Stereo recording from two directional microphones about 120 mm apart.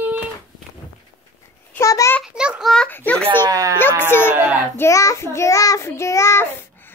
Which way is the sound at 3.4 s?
30° right (ahead or behind).